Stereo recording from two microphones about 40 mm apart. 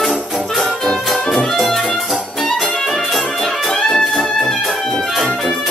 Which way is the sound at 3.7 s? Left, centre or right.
Left.